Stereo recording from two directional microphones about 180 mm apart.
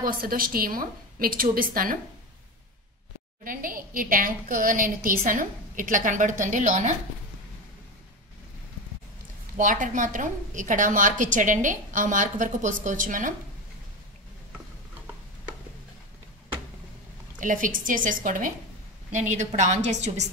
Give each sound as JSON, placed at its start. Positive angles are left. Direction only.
{"t": 0.0, "sound": "a woman's voice", "side_deg": -55}
{"t": 3.4, "sound": "a woman's voice", "side_deg": -50}
{"t": 9.6, "sound": "a woman's voice", "side_deg": -45}
{"t": 17.4, "sound": "a woman's voice", "side_deg": -45}